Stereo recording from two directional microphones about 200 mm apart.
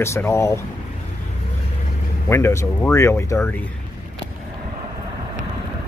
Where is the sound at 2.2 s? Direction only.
15° left (ahead or behind).